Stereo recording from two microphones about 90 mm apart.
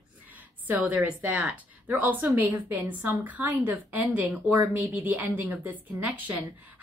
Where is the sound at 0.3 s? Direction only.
20° right (ahead or behind).